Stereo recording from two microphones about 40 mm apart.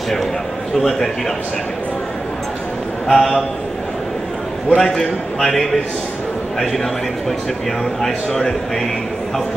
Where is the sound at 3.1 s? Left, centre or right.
Centre.